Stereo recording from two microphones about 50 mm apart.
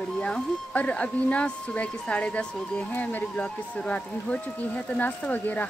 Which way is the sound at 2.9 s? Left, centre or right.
Left.